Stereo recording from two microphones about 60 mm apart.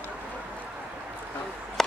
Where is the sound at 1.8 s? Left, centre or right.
Centre.